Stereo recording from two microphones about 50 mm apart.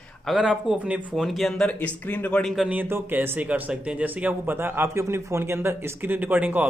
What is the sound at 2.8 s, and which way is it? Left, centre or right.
Speech, right.